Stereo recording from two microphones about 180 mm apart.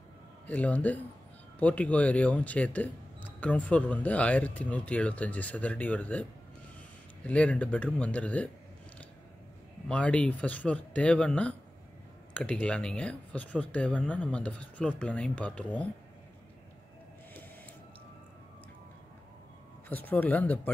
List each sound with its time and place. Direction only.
0.5 s speech: 10° left (ahead or behind)
7.2 s speech: 5° left (ahead or behind)
9.8 s speech: 5° left (ahead or behind)
19.9 s speech: 10° left (ahead or behind)